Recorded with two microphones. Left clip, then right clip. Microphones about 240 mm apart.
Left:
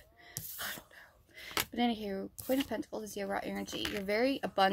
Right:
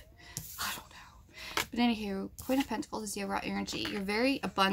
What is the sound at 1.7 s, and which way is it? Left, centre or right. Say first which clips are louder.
Speech: right 2 dB; centre.